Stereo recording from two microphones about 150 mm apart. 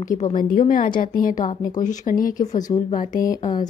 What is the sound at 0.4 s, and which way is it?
A woman's voice, 65° left (ahead or behind).